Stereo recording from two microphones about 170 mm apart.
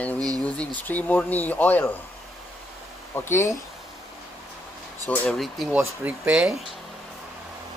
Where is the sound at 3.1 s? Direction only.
15° left (ahead or behind).